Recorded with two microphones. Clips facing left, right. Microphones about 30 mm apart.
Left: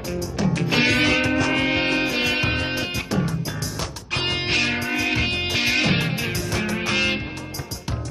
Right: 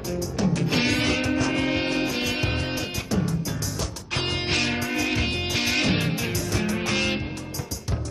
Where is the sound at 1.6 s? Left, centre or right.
Left.